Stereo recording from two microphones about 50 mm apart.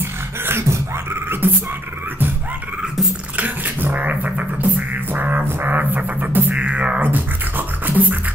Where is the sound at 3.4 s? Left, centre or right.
Right.